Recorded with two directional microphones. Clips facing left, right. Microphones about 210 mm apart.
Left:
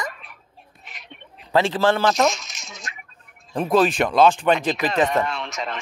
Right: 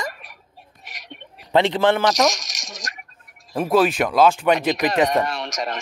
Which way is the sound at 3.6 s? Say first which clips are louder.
Even; 5° right (ahead or behind).